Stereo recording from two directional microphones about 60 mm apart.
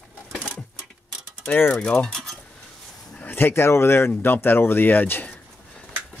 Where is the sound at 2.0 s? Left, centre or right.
Centre.